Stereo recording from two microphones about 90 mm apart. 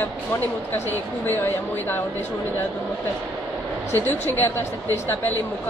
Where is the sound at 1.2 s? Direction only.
25° left (ahead or behind).